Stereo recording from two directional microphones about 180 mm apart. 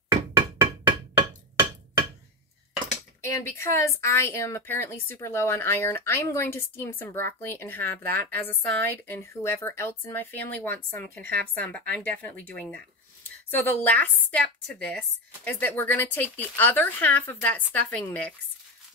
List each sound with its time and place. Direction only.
1.1 s hammer: 25° right (ahead or behind)
3.2 s speech: 15° left (ahead or behind)